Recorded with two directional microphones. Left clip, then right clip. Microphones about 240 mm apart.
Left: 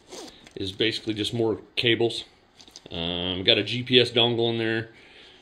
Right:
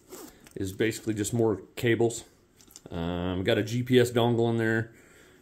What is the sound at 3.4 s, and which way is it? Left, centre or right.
Speech, right.